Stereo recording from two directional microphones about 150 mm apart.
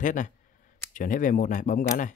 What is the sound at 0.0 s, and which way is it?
Speech, 60° left (ahead or behind).